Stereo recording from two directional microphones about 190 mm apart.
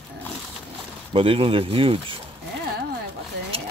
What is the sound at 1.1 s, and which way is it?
Speech, 30° right (ahead or behind).